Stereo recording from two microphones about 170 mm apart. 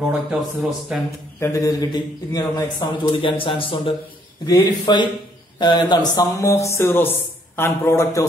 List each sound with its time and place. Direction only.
0.0 s speech: 5° right (ahead or behind)
1.4 s a man's voice: 20° left (ahead or behind)
6.1 s a sound: 15° left (ahead or behind)